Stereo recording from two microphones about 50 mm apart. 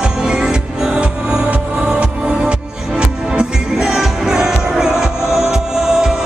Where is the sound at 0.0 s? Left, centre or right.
Centre.